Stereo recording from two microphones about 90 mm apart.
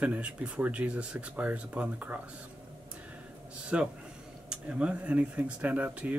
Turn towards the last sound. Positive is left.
turn(degrees=-15)  # may be behind; listen again after turning